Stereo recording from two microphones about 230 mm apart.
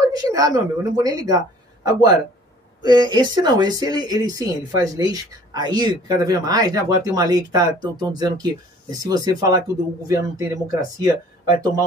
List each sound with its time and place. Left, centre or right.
0.0 s speech: centre
2.8 s speech: centre